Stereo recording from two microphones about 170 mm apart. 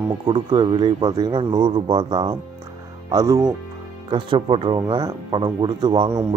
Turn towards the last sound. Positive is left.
turn(degrees=-30)  # may be behind; listen again after turning